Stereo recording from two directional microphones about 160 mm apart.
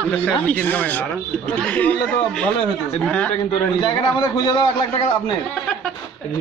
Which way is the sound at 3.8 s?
30° left (ahead or behind).